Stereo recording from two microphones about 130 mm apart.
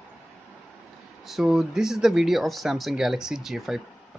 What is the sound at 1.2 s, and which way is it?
Speech, centre (ahead or behind).